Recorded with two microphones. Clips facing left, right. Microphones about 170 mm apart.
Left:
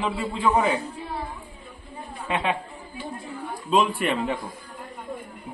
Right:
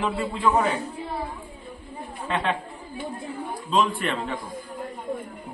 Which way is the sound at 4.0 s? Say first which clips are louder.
Left 3 dB; 15° left (ahead or behind).